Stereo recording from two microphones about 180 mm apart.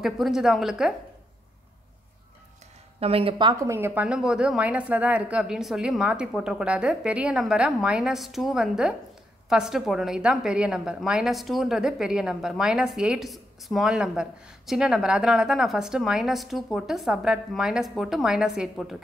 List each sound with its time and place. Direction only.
0.0 s a woman's voice: centre (ahead or behind)
3.0 s speech: 30° right (ahead or behind)
3.7 s a woman's voice: 10° right (ahead or behind)